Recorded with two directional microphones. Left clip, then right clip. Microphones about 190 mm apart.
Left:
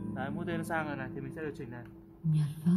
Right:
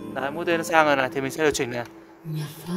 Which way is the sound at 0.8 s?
40° right (ahead or behind).